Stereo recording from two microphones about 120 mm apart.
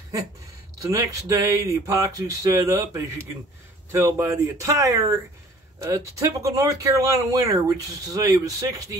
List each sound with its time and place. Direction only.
0.7 s speech: 30° right (ahead or behind)